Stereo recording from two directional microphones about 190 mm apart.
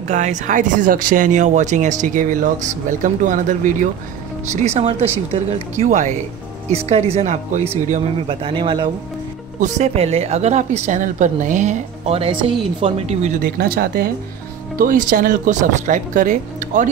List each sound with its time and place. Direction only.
0.1 s speech: 40° right (ahead or behind)
9.6 s speech: 35° right (ahead or behind)
13.4 s speech: 55° right (ahead or behind)